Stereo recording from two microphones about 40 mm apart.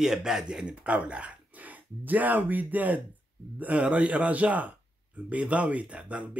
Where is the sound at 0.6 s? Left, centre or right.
Right.